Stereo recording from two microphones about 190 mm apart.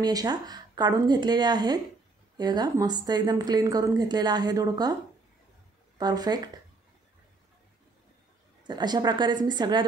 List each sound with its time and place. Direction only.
0.0 s a woman's voice: 20° right (ahead or behind)
5.9 s a woman's voice: 20° right (ahead or behind)
8.6 s a woman's voice: 20° right (ahead or behind)